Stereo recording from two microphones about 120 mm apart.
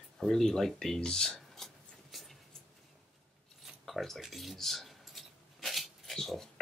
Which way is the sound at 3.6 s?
Centre (ahead or behind).